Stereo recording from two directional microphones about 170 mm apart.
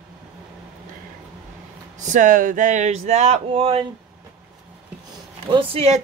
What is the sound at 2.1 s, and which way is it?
Speech, 50° right (ahead or behind).